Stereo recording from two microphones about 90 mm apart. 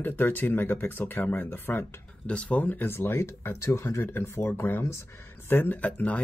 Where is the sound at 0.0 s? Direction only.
20° left (ahead or behind).